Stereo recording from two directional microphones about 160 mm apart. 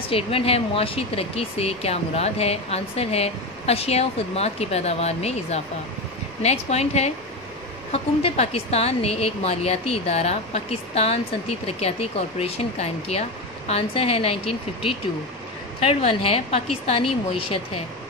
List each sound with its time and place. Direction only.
0.1 s speech: 35° left (ahead or behind)